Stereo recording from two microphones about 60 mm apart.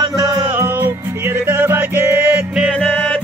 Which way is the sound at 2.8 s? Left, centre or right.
Left.